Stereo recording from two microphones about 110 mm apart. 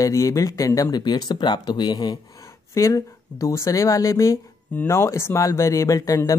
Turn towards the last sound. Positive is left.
turn(degrees=30)  # may be behind; listen again after turning